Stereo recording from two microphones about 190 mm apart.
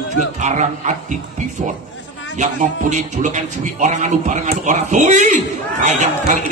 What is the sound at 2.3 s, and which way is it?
Speech, 40° right (ahead or behind).